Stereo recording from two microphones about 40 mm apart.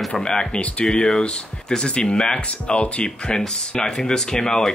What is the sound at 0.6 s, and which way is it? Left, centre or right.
Speech, left.